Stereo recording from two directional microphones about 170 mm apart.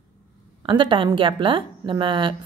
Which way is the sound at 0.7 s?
30° right (ahead or behind).